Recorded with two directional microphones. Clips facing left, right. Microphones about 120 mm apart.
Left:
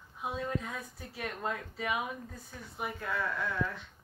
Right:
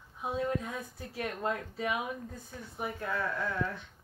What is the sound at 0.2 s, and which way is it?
A woman's voice, 30° right (ahead or behind).